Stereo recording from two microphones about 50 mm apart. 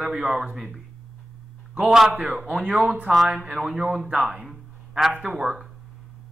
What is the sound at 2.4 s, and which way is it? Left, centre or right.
A man's voice, right.